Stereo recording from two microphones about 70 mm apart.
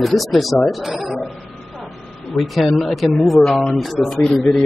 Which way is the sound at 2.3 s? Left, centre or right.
Centre.